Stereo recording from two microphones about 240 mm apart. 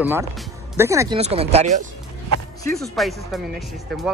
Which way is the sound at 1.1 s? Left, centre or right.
Right.